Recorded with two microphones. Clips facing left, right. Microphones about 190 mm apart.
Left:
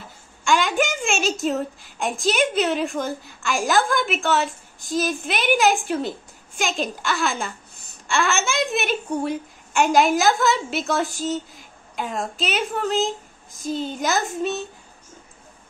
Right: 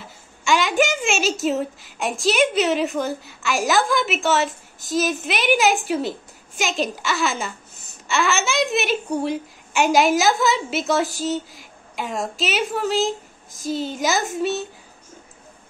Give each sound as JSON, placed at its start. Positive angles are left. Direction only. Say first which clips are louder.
{"t": 0.7, "sound": "a woman's voice", "louder": "right 2 dB", "side_deg": 0}
{"t": 4.8, "sound": "a child's voice", "louder": "right 2 dB", "side_deg": -40}
{"t": 5.5, "sound": "a woman's voice", "louder": "even", "side_deg": -5}